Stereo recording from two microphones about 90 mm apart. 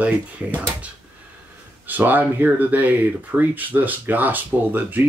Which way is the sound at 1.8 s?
20° right (ahead or behind).